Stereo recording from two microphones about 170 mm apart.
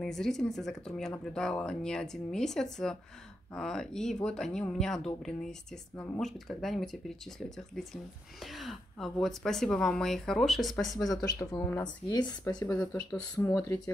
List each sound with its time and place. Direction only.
0.0 s speech: 5° left (ahead or behind)
11.1 s speech: 20° left (ahead or behind)
12.7 s speech: 5° left (ahead or behind)